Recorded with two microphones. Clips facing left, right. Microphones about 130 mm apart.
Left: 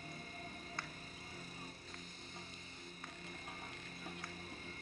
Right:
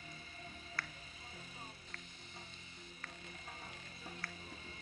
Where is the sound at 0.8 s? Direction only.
25° left (ahead or behind).